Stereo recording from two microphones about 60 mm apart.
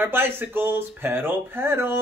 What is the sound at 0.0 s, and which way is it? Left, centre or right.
Speech, right.